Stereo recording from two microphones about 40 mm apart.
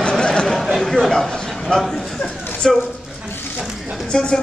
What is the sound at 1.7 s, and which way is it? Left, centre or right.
Speech, left.